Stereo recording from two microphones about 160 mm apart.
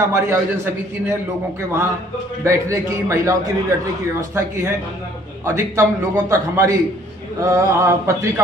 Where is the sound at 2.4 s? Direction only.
20° right (ahead or behind).